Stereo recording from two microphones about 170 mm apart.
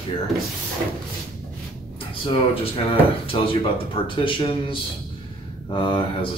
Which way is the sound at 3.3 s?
30° left (ahead or behind).